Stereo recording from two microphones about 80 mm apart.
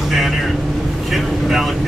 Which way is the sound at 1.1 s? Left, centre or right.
Centre.